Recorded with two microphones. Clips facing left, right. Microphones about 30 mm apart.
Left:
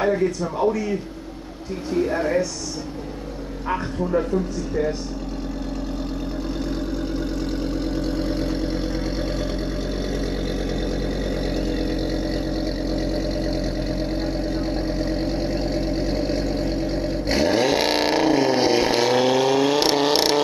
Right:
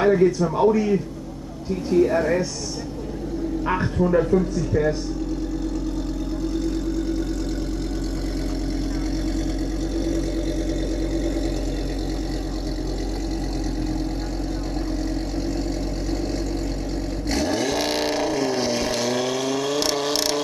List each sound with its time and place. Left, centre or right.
15.0 s vehicle: left